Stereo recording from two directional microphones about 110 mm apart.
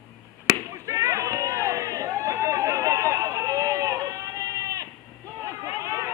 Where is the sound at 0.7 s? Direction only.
30° right (ahead or behind).